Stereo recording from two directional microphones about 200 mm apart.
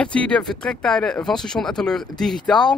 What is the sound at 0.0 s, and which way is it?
Speech, 5° left (ahead or behind).